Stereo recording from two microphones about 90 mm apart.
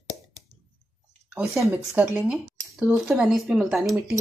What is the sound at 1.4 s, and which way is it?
Speech, 35° right (ahead or behind).